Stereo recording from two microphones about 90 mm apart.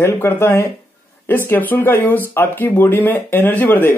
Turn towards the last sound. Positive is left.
turn(degrees=20)  # may be behind; listen again after turning